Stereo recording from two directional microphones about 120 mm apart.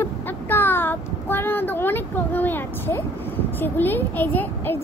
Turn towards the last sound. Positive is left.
turn(degrees=15)  # may be behind; listen again after turning